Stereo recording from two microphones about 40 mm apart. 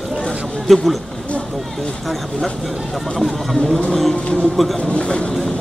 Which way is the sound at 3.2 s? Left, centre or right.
Centre.